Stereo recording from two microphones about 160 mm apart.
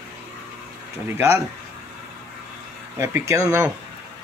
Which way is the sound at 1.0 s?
15° right (ahead or behind).